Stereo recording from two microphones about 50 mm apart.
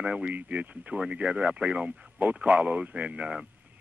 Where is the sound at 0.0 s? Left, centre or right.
Right.